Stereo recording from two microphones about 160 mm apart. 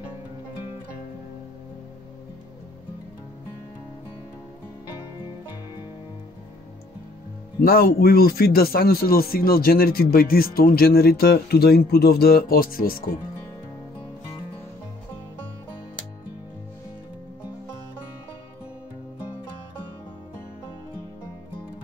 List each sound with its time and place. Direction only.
7.6 s speech: 70° left (ahead or behind)